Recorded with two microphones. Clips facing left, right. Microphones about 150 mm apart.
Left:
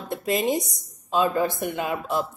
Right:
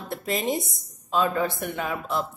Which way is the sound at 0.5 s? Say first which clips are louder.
Left 2 dB; 45° left (ahead or behind).